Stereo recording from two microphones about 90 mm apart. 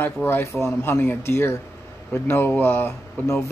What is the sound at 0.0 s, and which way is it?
Speech, 25° left (ahead or behind).